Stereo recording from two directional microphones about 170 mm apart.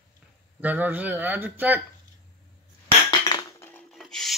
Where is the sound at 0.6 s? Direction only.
10° right (ahead or behind).